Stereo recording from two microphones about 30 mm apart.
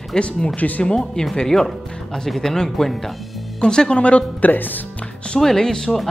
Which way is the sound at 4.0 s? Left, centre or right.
Left.